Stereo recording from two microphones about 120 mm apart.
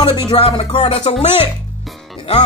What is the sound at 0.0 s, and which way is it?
Speech, 40° left (ahead or behind).